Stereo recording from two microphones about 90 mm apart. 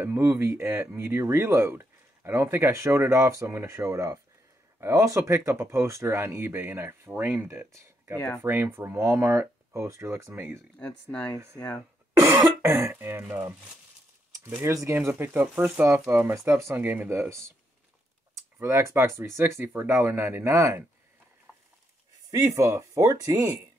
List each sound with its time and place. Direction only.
0.0 s speech: 30° right (ahead or behind)
10.8 s speech: 15° left (ahead or behind)
12.1 s cough: 40° right (ahead or behind)
12.9 s speech: 25° right (ahead or behind)
14.6 s speech: 35° right (ahead or behind)
17.1 s speech: 30° right (ahead or behind)
21.5 s a sound: 5° right (ahead or behind)
22.3 s speech: 35° right (ahead or behind)